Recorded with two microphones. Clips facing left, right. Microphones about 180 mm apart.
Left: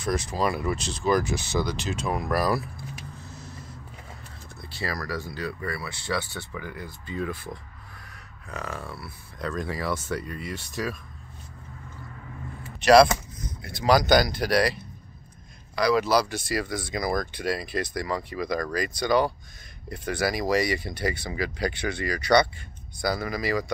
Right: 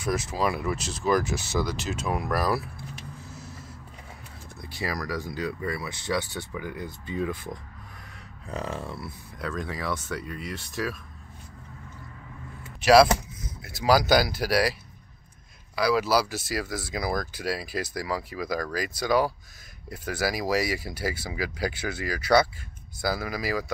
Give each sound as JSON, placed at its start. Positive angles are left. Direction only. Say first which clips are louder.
{"t": 0.0, "sound": "speech", "louder": "left 1 dB", "side_deg": -5}
{"t": 3.2, "sound": "vehicle", "louder": "even", "side_deg": -5}
{"t": 4.6, "sound": "speech", "louder": "right 1 dB", "side_deg": -15}
{"t": 9.4, "sound": "speech", "louder": "left 2 dB", "side_deg": 0}
{"t": 12.8, "sound": "speech", "louder": "left 1 dB", "side_deg": -5}